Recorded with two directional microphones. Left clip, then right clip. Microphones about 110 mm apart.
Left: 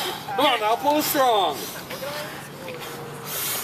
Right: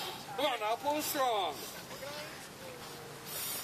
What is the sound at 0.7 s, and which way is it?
Speech, 10° right (ahead or behind).